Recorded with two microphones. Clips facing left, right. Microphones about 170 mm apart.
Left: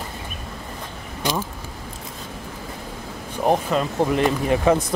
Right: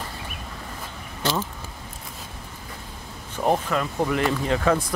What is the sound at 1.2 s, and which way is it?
Speech, 15° left (ahead or behind).